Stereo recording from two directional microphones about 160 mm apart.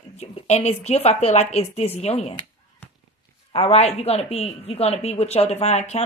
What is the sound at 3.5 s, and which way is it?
A woman's voice, 40° left (ahead or behind).